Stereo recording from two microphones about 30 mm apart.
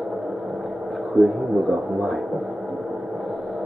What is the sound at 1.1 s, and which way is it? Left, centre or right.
Speech, centre.